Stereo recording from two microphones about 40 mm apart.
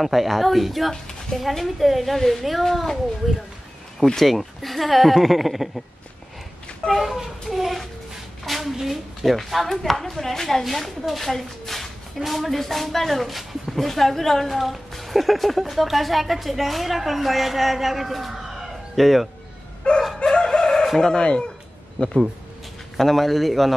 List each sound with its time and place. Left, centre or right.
0.0 s a woman's voice: centre
4.1 s a woman's voice: centre
7.0 s a woman's voice: centre
19.9 s speech: left
20.3 s chicken: centre
21.0 s speech: left
22.9 s a woman's voice: centre